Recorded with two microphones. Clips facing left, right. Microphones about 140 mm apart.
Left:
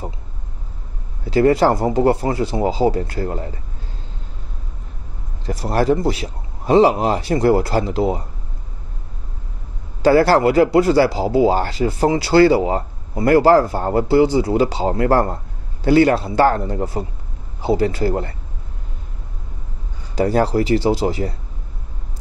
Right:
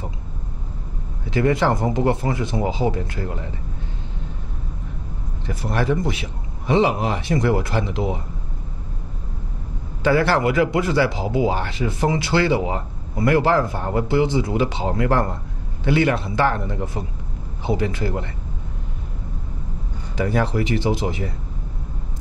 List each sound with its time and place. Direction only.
1.2 s speech: 35° left (ahead or behind)
5.5 s speech: 35° left (ahead or behind)
10.0 s speech: 35° left (ahead or behind)
20.2 s speech: 35° left (ahead or behind)